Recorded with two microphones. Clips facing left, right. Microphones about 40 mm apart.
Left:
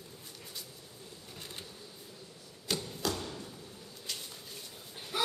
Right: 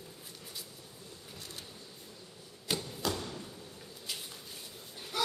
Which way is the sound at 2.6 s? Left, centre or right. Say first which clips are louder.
Even; centre.